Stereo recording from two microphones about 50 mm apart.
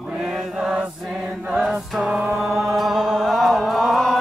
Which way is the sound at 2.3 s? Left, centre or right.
Centre.